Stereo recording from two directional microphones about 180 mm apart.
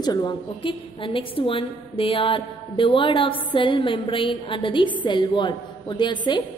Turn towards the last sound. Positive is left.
turn(degrees=25)  # may be behind; listen again after turning